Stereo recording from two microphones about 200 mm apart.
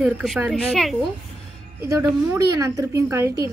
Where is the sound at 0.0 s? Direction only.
5° right (ahead or behind).